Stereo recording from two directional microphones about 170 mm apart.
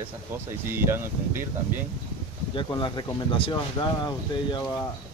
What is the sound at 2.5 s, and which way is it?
Speech, 25° left (ahead or behind).